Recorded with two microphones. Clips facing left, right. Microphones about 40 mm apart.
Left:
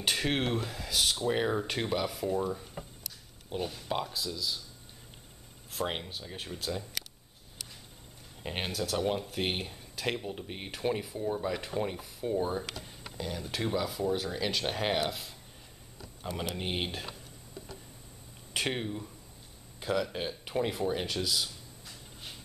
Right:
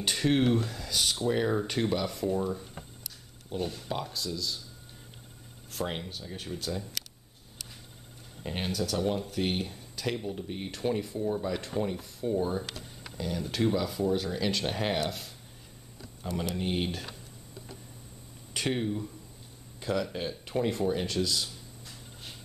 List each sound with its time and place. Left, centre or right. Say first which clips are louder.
0.0 s speech: right 4 dB; centre
5.9 s speech: even; centre
8.4 s speech: right 2 dB; centre
16.0 s a sound: right 3 dB; centre
16.6 s speech: right 3 dB; left
16.9 s speech: right 1 dB; centre
18.5 s speech: right 2 dB; centre